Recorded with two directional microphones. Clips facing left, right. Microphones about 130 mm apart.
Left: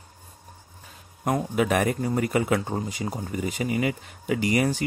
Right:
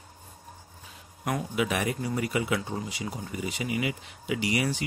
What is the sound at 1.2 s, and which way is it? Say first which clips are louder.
Speech: left 5 dB; 40° left (ahead or behind).